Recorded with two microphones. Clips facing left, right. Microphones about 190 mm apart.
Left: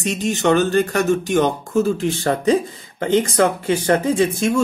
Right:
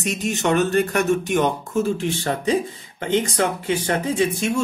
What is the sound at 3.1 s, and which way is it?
Speech, 45° left (ahead or behind).